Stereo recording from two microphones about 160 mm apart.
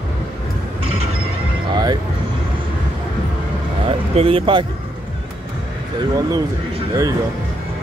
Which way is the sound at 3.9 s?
35° right (ahead or behind).